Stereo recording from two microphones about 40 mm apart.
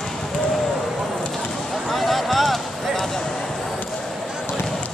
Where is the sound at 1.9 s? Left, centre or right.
Centre.